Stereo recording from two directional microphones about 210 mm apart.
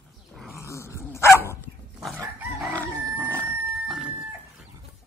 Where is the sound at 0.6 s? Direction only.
15° left (ahead or behind).